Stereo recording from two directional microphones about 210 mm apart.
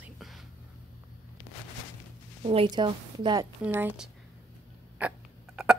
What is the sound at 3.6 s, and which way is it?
Speech, 10° right (ahead or behind).